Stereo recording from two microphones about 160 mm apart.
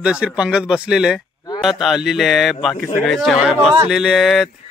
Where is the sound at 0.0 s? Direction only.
5° right (ahead or behind).